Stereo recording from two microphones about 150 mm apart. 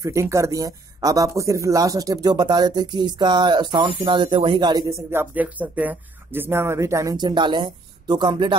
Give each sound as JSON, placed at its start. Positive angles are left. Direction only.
{"t": 0.0, "sound": "speech", "side_deg": -20}